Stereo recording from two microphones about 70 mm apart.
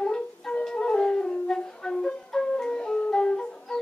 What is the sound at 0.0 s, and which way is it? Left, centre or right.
Music, centre.